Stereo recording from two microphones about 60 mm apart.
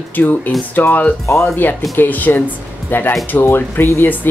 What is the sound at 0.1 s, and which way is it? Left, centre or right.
Speech, left.